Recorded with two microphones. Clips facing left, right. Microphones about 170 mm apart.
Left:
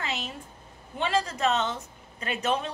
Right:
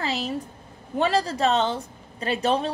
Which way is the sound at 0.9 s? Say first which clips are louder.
Right 5 dB; 35° right (ahead or behind).